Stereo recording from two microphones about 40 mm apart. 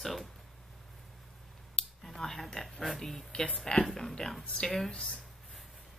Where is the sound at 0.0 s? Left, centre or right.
Centre.